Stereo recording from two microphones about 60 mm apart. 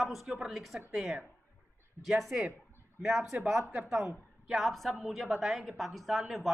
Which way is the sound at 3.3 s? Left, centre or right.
Right.